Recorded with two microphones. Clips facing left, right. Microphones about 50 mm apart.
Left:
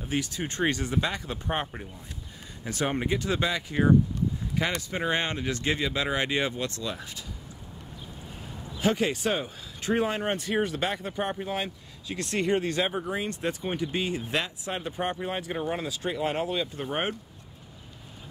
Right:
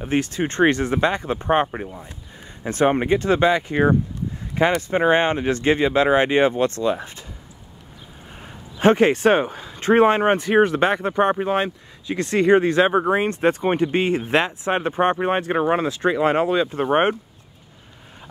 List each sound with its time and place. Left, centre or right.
0.0 s speech: right
8.7 s speech: right